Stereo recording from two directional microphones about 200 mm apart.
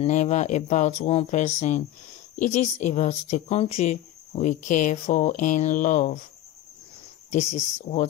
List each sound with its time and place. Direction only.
0.0 s speech: 35° left (ahead or behind)
7.5 s speech: 35° left (ahead or behind)